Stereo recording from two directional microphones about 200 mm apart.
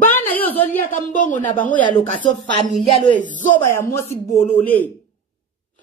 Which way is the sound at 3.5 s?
10° left (ahead or behind).